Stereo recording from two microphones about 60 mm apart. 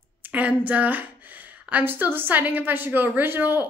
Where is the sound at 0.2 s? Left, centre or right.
Right.